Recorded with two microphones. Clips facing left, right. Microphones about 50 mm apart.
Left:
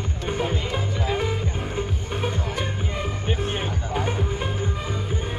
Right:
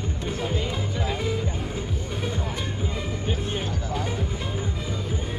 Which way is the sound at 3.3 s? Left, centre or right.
Left.